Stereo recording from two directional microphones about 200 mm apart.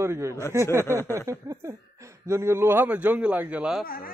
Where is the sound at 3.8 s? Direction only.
45° left (ahead or behind).